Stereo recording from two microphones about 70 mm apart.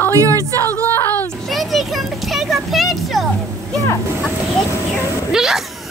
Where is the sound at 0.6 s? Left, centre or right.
Left.